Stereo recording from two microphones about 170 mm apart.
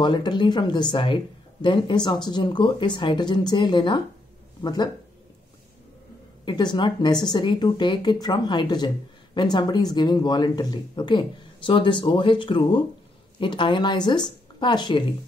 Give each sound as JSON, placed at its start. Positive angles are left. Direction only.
{"t": 0.0, "sound": "a woman's voice", "side_deg": 25}
{"t": 6.4, "sound": "a woman's voice", "side_deg": 25}